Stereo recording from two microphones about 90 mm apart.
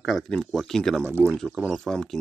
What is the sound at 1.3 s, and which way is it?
Speech, 5° left (ahead or behind).